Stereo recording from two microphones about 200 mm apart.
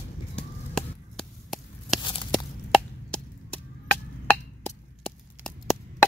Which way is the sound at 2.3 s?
5° left (ahead or behind).